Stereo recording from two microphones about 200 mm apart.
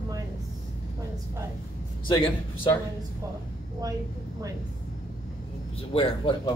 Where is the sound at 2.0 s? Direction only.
25° left (ahead or behind).